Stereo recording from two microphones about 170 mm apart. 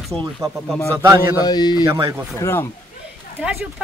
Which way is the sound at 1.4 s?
25° left (ahead or behind).